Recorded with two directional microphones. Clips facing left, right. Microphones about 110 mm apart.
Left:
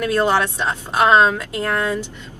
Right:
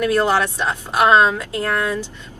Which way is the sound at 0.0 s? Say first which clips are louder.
Right 1 dB; 25° left (ahead or behind).